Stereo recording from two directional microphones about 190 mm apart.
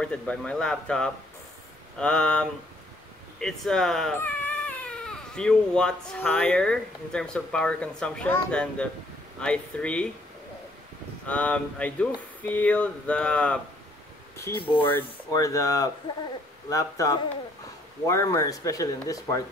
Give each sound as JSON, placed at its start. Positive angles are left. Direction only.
{"t": 0.0, "sound": "speech", "side_deg": 5}
{"t": 11.2, "sound": "speech", "side_deg": 5}